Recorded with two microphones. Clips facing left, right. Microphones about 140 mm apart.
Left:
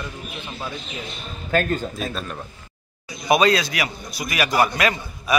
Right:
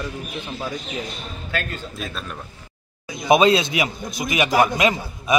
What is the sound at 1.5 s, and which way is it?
Speech, 45° left (ahead or behind).